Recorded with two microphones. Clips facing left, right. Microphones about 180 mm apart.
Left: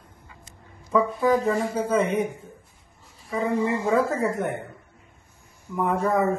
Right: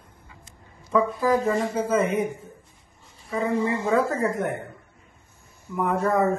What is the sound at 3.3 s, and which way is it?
Speech, centre (ahead or behind).